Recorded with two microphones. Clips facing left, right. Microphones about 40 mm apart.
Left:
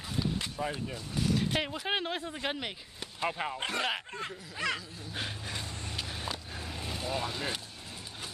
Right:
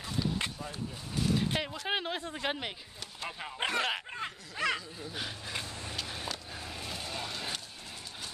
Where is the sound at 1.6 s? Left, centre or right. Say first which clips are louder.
Left 2 dB; centre.